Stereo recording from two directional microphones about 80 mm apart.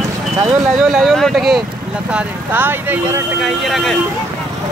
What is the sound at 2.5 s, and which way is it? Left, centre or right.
Speech, right.